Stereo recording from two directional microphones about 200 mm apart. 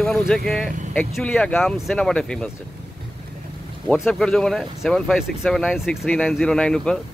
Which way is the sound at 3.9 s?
Centre (ahead or behind).